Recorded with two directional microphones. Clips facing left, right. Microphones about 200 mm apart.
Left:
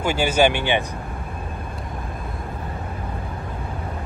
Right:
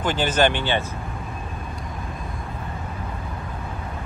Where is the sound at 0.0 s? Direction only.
10° left (ahead or behind).